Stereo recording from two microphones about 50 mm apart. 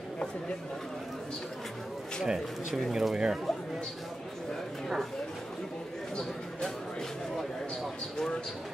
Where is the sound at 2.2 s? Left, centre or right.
Centre.